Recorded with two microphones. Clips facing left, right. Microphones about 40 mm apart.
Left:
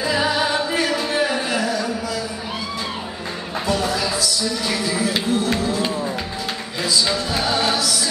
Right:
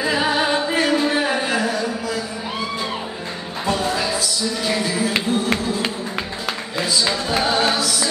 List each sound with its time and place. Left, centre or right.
0.0 s singing: right
3.6 s music: right
6.8 s music: right